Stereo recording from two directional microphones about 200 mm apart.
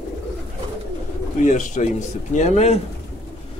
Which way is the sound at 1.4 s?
40° left (ahead or behind).